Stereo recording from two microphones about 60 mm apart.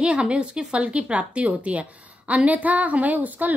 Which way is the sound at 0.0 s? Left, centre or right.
Centre.